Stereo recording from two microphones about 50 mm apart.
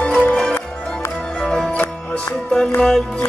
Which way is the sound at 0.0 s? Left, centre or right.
Left.